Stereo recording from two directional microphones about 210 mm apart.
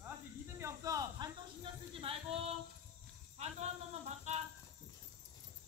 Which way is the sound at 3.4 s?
30° right (ahead or behind).